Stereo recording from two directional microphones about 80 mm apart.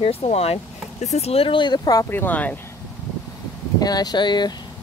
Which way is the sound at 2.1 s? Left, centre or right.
Left.